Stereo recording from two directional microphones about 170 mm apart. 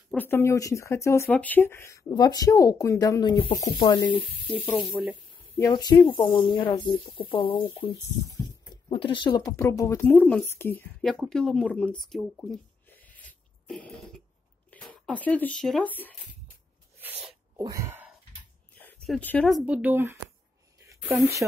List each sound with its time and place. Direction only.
0.1 s speech: 10° left (ahead or behind)
4.6 s speech: 5° left (ahead or behind)
5.6 s speech: 25° left (ahead or behind); by 12.0 s 5° left (ahead or behind)
12.1 s a sound: centre (ahead or behind)
14.7 s speech: 5° left (ahead or behind)
17.0 s sneeze: 10° right (ahead or behind)
17.6 s wail: 20° right (ahead or behind)
18.8 s speech: 5° left (ahead or behind); by 20.2 s 10° right (ahead or behind)
20.8 s a sound: 15° right (ahead or behind)